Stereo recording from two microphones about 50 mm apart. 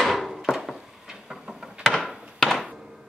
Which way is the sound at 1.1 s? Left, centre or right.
Centre.